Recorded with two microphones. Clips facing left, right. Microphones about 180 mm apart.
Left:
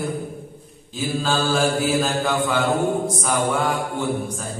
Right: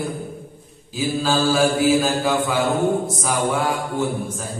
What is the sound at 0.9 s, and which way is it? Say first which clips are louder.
Mantra: right 2 dB; 5° right (ahead or behind).